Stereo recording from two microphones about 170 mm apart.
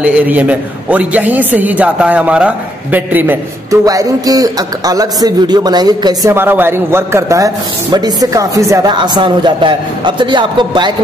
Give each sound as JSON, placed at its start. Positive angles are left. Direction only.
{"t": 0.0, "sound": "a man's voice", "side_deg": -10}